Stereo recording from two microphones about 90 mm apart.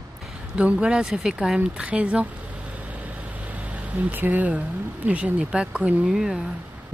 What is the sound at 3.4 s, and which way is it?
Speech, 15° right (ahead or behind).